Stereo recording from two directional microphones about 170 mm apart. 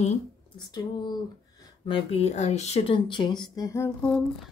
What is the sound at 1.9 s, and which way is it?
Speech, 40° left (ahead or behind).